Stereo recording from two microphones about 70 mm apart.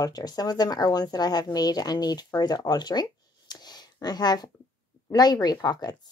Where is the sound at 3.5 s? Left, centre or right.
Left.